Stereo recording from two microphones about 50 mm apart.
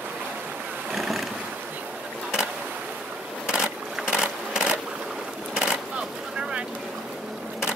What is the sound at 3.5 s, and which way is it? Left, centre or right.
Sewing machine, centre.